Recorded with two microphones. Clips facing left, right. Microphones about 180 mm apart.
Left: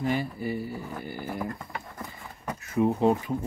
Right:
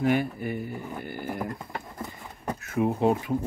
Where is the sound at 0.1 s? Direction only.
55° right (ahead or behind).